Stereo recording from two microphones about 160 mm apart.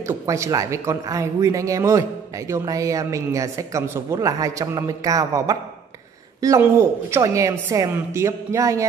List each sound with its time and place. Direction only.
0.0 s speech: 20° right (ahead or behind)